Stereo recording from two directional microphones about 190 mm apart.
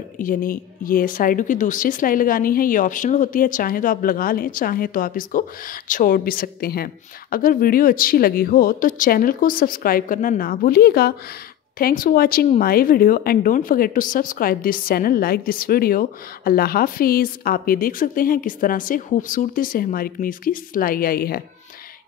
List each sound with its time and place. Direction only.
0.2 s speech: 45° left (ahead or behind)